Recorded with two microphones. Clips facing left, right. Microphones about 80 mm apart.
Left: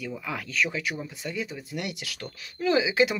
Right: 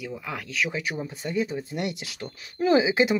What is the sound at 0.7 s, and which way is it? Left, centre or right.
Speech, right.